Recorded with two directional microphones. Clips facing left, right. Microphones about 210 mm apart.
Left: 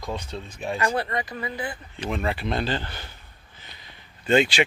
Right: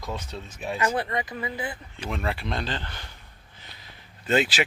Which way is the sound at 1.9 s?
Centre (ahead or behind).